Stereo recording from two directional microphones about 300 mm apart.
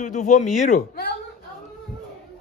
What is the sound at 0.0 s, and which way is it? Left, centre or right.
A woman's voice, left.